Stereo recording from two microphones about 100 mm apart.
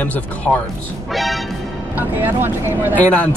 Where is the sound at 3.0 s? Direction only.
15° left (ahead or behind).